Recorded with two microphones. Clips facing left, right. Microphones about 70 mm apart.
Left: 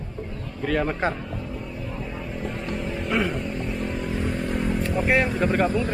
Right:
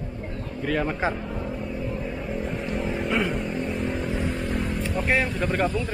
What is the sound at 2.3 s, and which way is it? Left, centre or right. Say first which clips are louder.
Vehicle: right 1 dB; centre.